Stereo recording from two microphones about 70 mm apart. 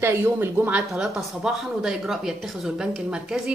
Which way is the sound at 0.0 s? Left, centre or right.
Right.